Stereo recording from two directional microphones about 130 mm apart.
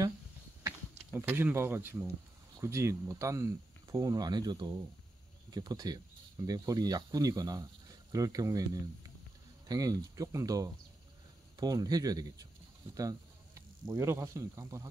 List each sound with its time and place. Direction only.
1.1 s speech: 15° right (ahead or behind)
9.7 s speech: 30° right (ahead or behind)
13.6 s speech: 20° right (ahead or behind)